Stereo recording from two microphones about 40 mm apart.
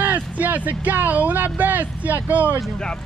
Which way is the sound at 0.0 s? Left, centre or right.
Right.